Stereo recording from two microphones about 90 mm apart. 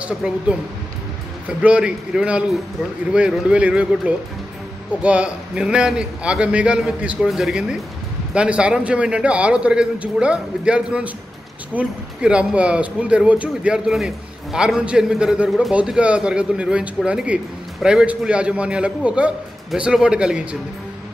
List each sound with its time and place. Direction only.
0.0 s speech: 10° right (ahead or behind)